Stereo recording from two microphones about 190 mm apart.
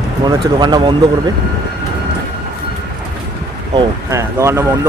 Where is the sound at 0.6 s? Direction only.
25° right (ahead or behind).